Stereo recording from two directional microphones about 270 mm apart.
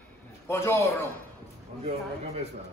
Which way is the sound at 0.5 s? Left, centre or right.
Centre.